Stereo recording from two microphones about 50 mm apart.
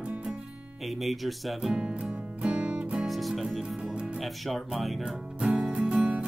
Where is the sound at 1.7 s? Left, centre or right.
Right.